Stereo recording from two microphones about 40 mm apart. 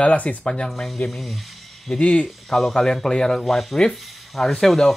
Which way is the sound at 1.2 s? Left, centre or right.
Centre.